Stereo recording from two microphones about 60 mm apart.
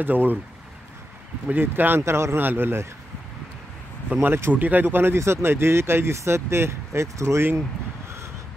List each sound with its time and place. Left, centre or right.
0.0 s a man's voice: right
1.5 s a man's voice: right
2.0 s speech: right
2.3 s a man's voice: right
4.1 s a man's voice: right